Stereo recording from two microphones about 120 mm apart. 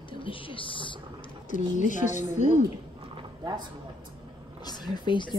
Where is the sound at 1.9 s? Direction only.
90° left.